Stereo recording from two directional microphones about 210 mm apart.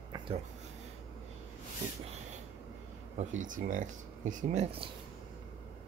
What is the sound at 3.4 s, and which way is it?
Speech, 40° right (ahead or behind).